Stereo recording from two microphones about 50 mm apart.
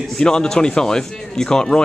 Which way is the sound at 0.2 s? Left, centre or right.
Centre.